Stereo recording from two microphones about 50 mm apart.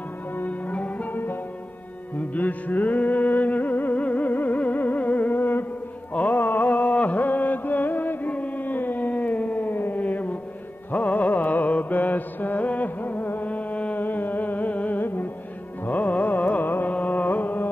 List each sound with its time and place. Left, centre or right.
0.4 s music: left
1.1 s music: left
6.1 s music: left
9.7 s a sound: left
10.9 s music: left
14.0 s carnatic music: left